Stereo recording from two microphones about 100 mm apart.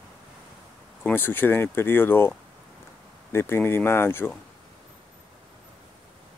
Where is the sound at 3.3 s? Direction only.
25° left (ahead or behind).